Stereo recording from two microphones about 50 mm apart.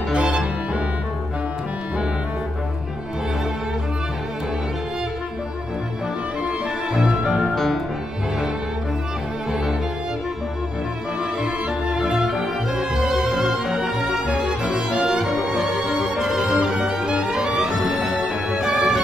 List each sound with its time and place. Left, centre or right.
0.1 s music: right
6.9 s music: centre
11.9 s music: centre